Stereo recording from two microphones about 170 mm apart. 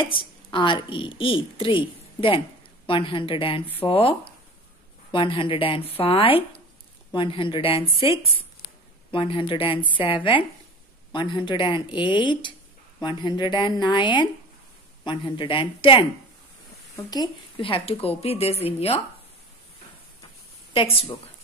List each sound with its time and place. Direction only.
0.1 s a woman's voice: 30° left (ahead or behind)